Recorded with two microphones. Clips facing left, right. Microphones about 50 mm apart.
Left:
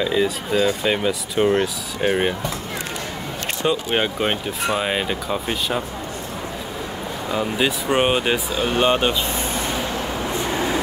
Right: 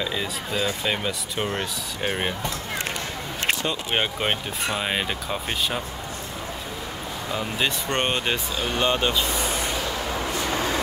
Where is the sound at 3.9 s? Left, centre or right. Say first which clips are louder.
Left 3 dB; centre.